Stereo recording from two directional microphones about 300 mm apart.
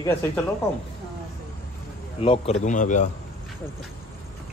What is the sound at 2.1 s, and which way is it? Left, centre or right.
Speech, centre.